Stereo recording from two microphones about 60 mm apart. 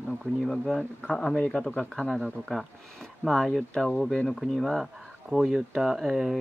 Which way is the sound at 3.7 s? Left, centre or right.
Centre.